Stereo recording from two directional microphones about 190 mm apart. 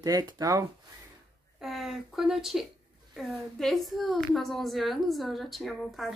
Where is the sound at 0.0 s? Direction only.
20° right (ahead or behind).